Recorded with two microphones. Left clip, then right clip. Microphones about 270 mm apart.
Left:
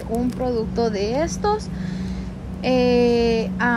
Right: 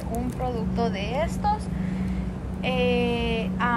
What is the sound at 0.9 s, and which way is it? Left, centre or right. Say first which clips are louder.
Speech: left 5 dB; left.